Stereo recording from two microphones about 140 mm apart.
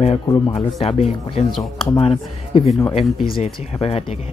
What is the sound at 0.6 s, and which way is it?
Speech, 45° left (ahead or behind).